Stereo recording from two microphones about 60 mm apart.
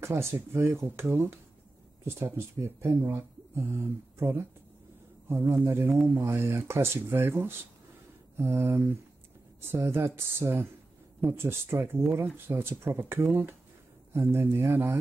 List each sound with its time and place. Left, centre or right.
0.0 s speech: right
5.3 s speech: right